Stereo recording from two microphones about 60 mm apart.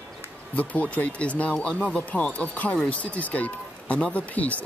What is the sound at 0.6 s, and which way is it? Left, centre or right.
Speech, left.